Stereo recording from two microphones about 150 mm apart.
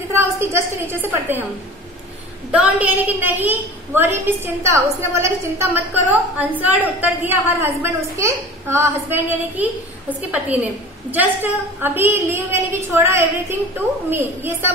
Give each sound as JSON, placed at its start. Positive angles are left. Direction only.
{"t": 0.1, "sound": "a woman's voice", "side_deg": -15}
{"t": 2.5, "sound": "a woman's voice", "side_deg": -10}